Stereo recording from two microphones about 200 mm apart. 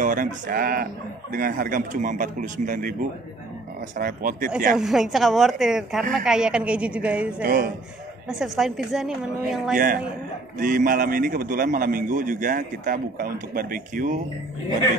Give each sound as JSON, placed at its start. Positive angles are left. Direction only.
{"t": 0.0, "sound": "a man's voice", "side_deg": -40}
{"t": 4.7, "sound": "a woman's voice", "side_deg": 0}
{"t": 7.4, "sound": "a man's voice", "side_deg": -45}
{"t": 8.3, "sound": "a woman's voice", "side_deg": 0}
{"t": 10.6, "sound": "a man's voice", "side_deg": -45}